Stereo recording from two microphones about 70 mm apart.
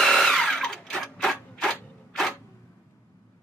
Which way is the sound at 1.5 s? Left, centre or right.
Centre.